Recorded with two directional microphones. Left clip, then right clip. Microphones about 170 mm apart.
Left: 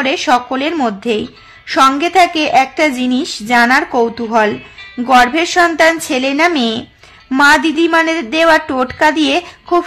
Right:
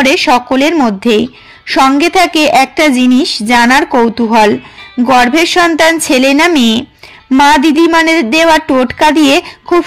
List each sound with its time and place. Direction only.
0.0 s speech: 25° right (ahead or behind)